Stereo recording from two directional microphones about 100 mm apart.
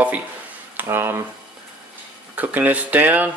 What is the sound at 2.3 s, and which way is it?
Speech, 15° right (ahead or behind).